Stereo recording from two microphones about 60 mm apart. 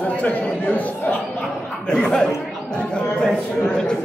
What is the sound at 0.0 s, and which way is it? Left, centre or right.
Chatter, left.